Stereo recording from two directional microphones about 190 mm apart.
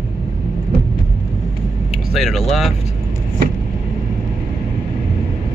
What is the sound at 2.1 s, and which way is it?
Speech, centre (ahead or behind).